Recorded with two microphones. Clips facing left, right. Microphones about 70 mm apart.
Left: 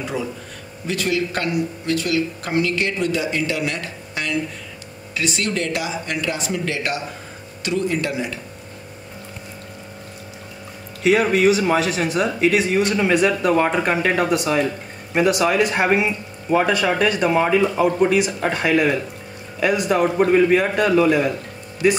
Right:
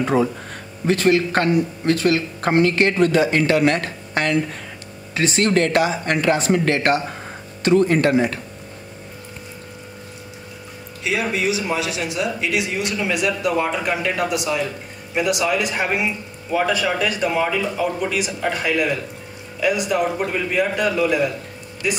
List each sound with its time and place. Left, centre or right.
0.0 s speech: right
5.1 s speech: right
11.1 s speech: left
16.5 s speech: left